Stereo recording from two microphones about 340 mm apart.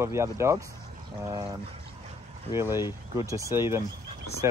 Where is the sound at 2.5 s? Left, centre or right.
Centre.